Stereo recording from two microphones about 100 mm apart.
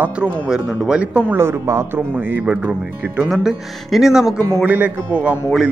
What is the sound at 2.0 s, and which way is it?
A man's voice, 20° right (ahead or behind).